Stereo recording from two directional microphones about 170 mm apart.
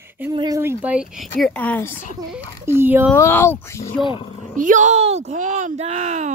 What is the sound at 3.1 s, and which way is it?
Speech, 15° left (ahead or behind).